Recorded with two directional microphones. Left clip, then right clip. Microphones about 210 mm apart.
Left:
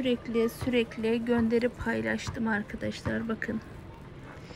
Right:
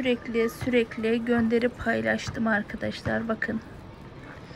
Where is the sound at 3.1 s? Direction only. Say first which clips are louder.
Right 7 dB; 35° left (ahead or behind).